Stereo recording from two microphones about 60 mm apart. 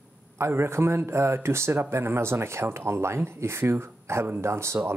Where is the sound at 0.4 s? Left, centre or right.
Right.